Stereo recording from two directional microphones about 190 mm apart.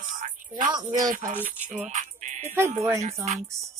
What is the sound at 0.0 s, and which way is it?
Music, 45° right (ahead or behind).